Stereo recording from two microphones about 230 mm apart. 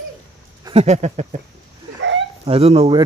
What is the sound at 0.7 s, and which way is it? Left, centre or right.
Speech, right.